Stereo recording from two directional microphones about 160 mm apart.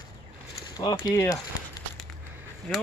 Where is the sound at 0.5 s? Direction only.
25° left (ahead or behind).